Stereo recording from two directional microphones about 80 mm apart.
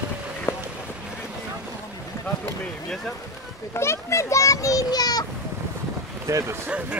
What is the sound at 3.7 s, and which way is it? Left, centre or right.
A child's voice, left.